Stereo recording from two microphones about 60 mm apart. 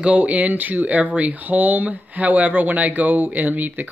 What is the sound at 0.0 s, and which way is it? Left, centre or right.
Speech, right.